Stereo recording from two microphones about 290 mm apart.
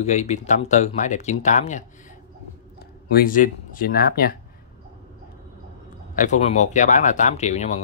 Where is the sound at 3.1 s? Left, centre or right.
Left.